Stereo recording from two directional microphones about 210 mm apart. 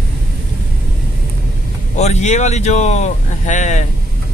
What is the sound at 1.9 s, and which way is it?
Speech, 30° left (ahead or behind).